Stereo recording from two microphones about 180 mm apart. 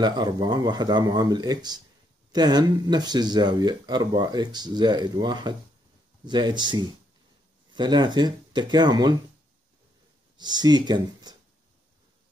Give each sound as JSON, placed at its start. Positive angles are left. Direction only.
{"t": 0.0, "sound": "speech", "side_deg": -25}
{"t": 10.3, "sound": "speech", "side_deg": -25}